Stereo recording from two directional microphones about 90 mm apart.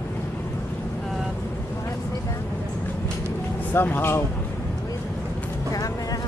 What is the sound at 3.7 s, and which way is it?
Speech, 25° left (ahead or behind).